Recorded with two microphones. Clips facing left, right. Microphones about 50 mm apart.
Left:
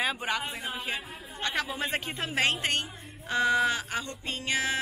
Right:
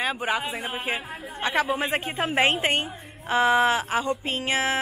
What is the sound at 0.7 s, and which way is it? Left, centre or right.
A woman's voice, right.